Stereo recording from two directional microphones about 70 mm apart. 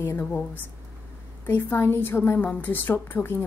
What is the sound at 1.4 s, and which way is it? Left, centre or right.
A woman's voice, left.